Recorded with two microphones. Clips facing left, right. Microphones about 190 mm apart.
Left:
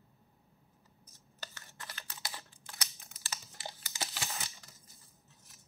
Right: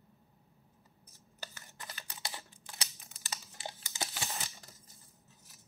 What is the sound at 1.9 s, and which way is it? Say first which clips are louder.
Camera: right 2 dB; 20° right (ahead or behind).